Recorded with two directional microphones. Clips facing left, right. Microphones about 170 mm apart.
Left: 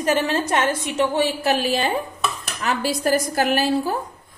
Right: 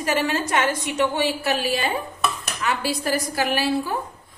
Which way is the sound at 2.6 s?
40° left (ahead or behind).